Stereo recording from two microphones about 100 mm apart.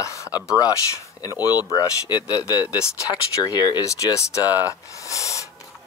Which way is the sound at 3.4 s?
40° left (ahead or behind).